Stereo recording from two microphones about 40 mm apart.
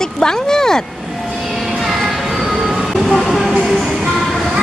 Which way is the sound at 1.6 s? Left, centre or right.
Centre.